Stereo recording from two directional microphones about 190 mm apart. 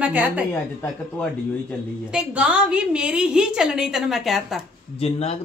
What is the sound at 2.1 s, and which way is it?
A woman's voice, 5° right (ahead or behind).